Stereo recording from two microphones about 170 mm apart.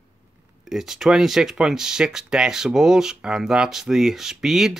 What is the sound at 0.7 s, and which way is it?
Speech, centre (ahead or behind).